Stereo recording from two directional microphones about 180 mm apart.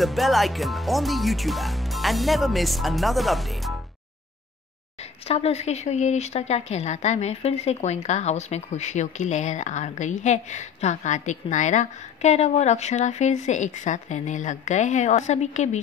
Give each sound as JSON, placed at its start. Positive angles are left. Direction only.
{"t": 0.0, "sound": "speech", "side_deg": 0}
{"t": 5.3, "sound": "a woman's voice", "side_deg": 35}